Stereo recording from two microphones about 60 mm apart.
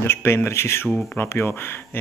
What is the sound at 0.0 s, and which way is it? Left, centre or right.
Speech, left.